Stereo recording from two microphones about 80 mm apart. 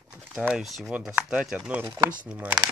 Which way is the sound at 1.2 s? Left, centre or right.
Centre.